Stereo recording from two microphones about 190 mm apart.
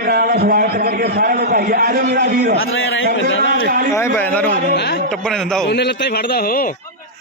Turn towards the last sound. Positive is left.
turn(degrees=50)  # may be behind; listen again after turning